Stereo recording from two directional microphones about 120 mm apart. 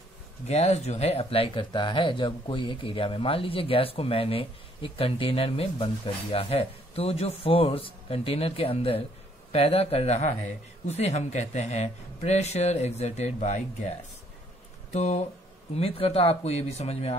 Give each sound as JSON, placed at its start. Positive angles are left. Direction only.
{"t": 0.5, "sound": "a man's voice", "side_deg": 65}
{"t": 15.7, "sound": "speech", "side_deg": 55}